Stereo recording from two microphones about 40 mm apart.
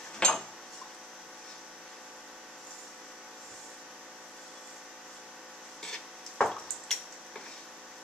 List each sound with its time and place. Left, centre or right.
0.2 s dishes: centre
5.8 s printer: centre
6.5 s a sound: centre